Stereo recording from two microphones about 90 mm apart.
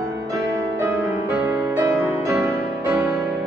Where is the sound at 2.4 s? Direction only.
20° right (ahead or behind).